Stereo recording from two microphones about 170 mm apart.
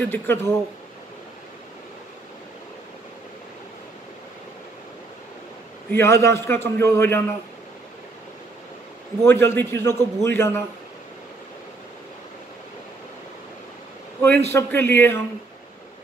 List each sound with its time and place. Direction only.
0.0 s a man's voice: 10° left (ahead or behind)
5.9 s a man's voice: 15° left (ahead or behind)
9.2 s a man's voice: 15° left (ahead or behind)
14.5 s a man's voice: 15° left (ahead or behind)